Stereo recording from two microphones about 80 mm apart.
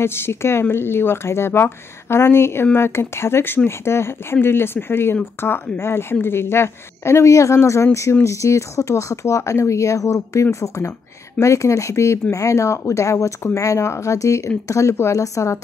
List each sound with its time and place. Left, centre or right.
0.0 s speech: left